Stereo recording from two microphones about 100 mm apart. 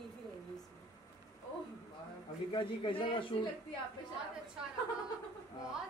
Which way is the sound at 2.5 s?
60° left (ahead or behind).